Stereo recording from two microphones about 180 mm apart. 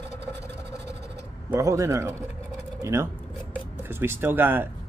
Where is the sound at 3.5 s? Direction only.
10° right (ahead or behind).